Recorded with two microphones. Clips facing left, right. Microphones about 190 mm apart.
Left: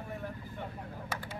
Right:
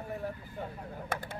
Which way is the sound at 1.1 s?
55° right (ahead or behind).